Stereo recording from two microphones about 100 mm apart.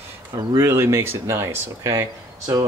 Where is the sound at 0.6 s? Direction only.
25° right (ahead or behind).